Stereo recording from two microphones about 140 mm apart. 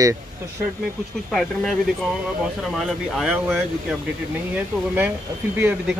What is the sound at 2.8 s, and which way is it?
Speech, centre (ahead or behind).